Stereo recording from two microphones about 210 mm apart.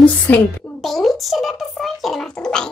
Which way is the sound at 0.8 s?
Centre (ahead or behind).